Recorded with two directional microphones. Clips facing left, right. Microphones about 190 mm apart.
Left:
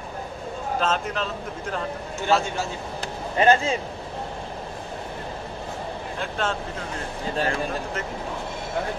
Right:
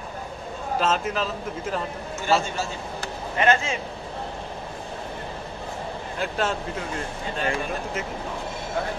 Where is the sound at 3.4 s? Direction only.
35° left (ahead or behind).